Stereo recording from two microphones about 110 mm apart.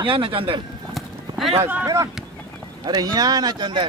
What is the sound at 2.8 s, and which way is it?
Speech, 40° right (ahead or behind).